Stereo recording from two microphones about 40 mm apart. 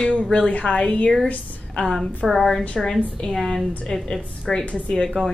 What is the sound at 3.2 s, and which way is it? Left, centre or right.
Speech, centre.